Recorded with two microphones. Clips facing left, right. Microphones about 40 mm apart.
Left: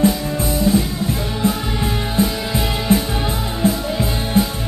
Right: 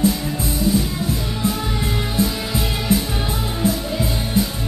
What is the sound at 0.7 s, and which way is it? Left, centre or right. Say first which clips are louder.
Music: left 2 dB; left.